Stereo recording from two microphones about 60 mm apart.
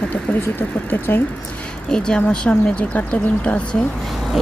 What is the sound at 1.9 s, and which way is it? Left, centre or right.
Speech, centre.